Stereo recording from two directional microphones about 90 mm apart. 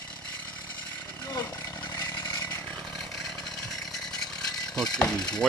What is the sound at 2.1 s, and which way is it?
Chainsaw, 40° left (ahead or behind).